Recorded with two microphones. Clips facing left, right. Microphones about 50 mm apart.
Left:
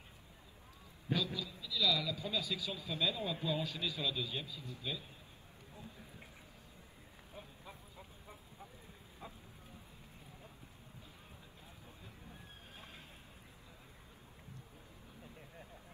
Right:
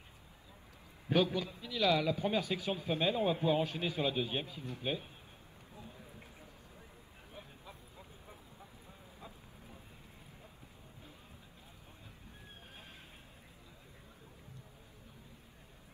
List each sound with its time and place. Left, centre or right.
1.0 s a man's voice: right